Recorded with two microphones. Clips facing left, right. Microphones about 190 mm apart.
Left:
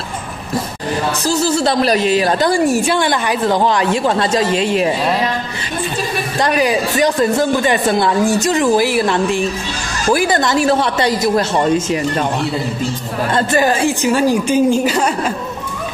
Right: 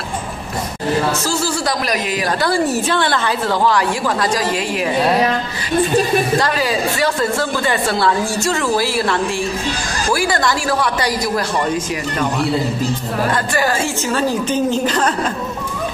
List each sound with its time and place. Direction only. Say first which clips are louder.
1.2 s speech: left 4 dB; 20° left (ahead or behind)
2.5 s speech: left 3 dB; 10° left (ahead or behind)
6.4 s speech: left 3 dB; 20° left (ahead or behind)
13.5 s a woman's voice: left 4 dB; 20° left (ahead or behind)